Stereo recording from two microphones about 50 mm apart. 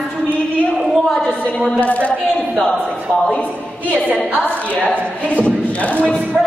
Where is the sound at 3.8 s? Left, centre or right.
Left.